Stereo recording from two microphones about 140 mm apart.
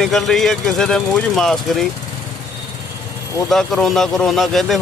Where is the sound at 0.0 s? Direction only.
Centre (ahead or behind).